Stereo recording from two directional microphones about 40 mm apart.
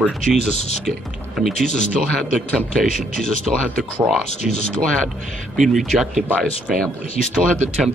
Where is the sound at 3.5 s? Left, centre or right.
Centre.